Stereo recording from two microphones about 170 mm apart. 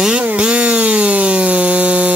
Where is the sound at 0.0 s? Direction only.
5° right (ahead or behind).